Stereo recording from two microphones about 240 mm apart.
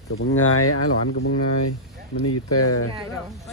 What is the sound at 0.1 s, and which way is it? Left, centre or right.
Speech, left.